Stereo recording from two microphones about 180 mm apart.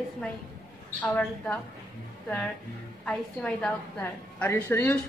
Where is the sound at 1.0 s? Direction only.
5° left (ahead or behind).